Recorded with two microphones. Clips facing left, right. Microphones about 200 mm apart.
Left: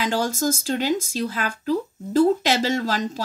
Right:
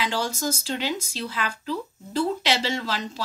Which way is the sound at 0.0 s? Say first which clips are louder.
Left 4 dB; 45° left (ahead or behind).